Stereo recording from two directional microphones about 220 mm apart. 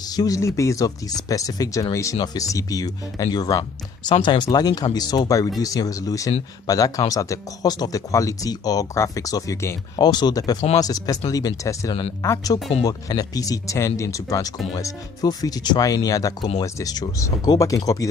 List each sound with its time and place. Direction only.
0.0 s speech: 15° left (ahead or behind)